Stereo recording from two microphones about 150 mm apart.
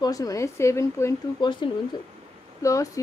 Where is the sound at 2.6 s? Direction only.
20° left (ahead or behind).